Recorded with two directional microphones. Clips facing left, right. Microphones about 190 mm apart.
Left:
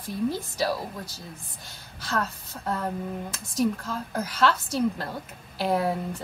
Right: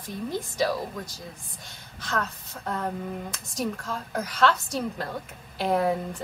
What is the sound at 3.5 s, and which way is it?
Speech, centre (ahead or behind).